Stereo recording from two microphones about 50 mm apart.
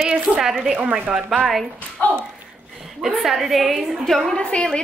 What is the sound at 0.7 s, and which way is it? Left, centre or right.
Speech, right.